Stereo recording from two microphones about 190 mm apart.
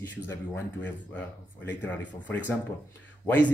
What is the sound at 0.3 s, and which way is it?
Speech, 10° left (ahead or behind).